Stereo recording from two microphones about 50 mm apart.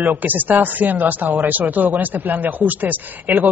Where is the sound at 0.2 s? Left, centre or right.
Right.